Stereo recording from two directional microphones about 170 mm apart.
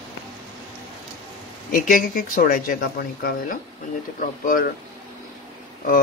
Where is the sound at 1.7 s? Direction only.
55° left (ahead or behind).